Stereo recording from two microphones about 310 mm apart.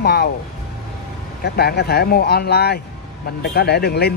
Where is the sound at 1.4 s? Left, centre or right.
Left.